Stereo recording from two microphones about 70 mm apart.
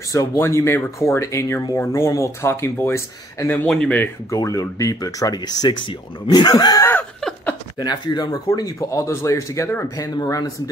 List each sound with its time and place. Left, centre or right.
0.1 s speech: left
3.6 s speech: centre
4.3 s speech: left
6.2 s speech: left
7.8 s speech: left
8.5 s speech: left
10.2 s speech: left